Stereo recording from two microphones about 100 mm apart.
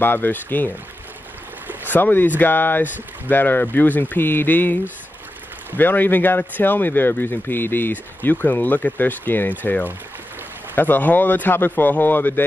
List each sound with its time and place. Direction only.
0.0 s speech: 20° left (ahead or behind)
1.9 s speech: 20° left (ahead or behind)
5.8 s speech: 20° left (ahead or behind)